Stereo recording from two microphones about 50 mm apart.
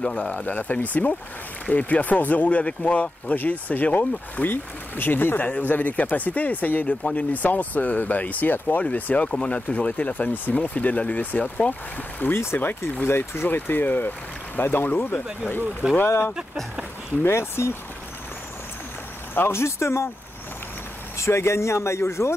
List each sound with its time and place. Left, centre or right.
0.0 s speech: left
5.4 s speech: left
12.2 s speech: left
13.0 s speech: left
13.5 s speech: left
15.8 s speech: centre
17.2 s speech: left
19.3 s a man's voice: left
21.2 s a man's voice: left